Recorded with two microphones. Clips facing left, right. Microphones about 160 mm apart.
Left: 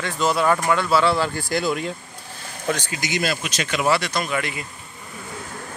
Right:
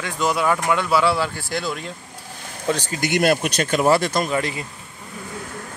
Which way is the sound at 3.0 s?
60° right (ahead or behind).